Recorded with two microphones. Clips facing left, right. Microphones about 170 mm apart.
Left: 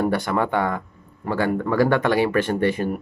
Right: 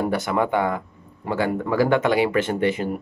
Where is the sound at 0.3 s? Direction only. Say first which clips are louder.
Right 1 dB; 15° right (ahead or behind).